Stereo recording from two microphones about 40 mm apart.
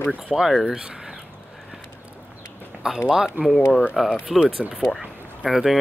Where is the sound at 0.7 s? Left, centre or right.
Right.